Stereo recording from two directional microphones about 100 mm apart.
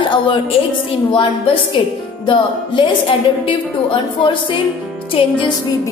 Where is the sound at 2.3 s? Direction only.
60° left (ahead or behind).